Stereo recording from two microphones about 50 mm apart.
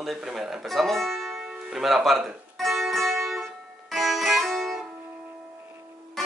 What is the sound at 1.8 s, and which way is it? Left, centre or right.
Music, centre.